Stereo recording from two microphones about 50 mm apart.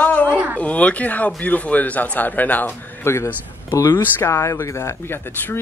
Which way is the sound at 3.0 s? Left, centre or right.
Left.